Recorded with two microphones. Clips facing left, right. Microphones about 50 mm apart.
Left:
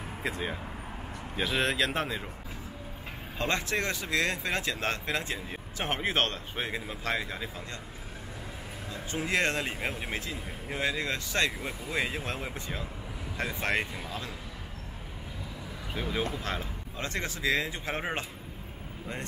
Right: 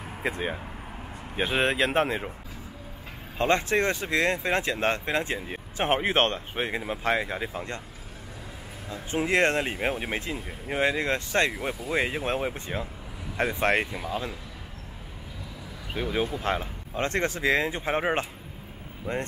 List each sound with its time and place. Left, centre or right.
0.2 s speech: right
3.3 s speech: right
8.9 s speech: right
13.9 s speech: centre
15.9 s speech: centre
16.3 s speech: right